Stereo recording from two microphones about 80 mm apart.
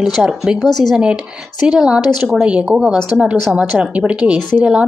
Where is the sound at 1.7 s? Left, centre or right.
Centre.